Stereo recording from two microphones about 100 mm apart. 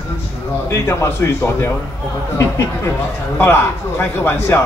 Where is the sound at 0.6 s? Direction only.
25° left (ahead or behind).